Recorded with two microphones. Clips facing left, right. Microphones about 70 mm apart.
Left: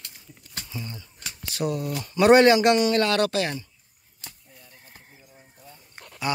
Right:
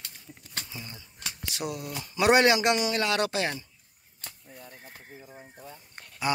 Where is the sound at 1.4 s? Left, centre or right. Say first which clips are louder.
Left 7 dB; centre.